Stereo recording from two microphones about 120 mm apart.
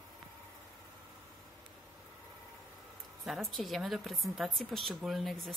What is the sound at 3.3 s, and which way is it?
A woman's voice, centre (ahead or behind).